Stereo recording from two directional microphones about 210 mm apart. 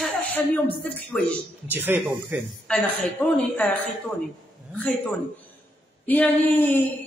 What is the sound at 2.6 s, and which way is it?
A man's voice, 5° left (ahead or behind).